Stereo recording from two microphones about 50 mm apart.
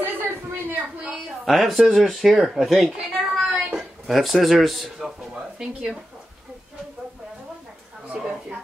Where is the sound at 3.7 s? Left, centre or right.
Centre.